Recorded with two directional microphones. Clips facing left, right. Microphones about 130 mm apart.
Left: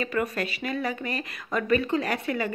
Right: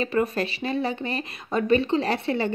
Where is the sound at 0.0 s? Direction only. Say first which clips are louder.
Right 4 dB; 30° right (ahead or behind).